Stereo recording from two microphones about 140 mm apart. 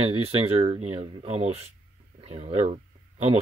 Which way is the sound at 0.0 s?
45° right (ahead or behind).